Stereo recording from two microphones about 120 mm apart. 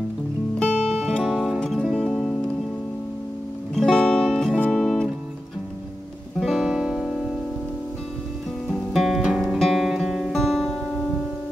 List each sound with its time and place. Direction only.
0.6 s music: 5° left (ahead or behind)
3.7 s music: 5° left (ahead or behind)
6.4 s music: 5° right (ahead or behind)
8.9 s music: centre (ahead or behind)